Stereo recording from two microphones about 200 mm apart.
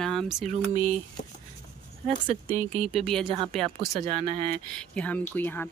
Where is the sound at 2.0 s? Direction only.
30° right (ahead or behind).